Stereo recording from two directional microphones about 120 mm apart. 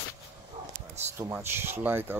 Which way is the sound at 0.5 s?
60° right (ahead or behind).